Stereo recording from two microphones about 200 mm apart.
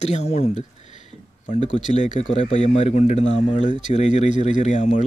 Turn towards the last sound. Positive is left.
turn(degrees=35)  # may be behind; listen again after turning